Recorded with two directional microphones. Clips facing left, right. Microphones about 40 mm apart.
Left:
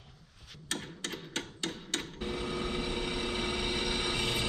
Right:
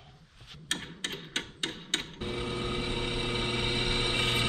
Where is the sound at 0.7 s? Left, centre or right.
Right.